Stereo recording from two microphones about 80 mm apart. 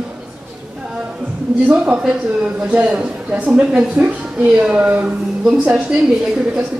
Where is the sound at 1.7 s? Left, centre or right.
Centre.